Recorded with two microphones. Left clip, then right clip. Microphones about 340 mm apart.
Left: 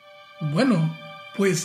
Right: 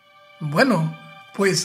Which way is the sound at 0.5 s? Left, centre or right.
Centre.